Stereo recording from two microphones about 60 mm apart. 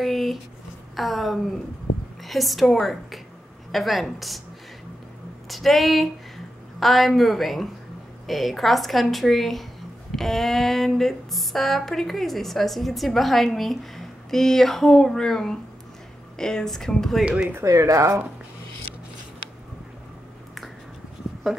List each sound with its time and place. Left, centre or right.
0.0 s a sound: centre
0.9 s speech: centre
5.5 s a woman's voice: centre
17.6 s speech: right